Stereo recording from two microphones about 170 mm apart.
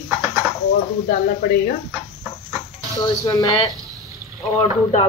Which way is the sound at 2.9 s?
20° left (ahead or behind).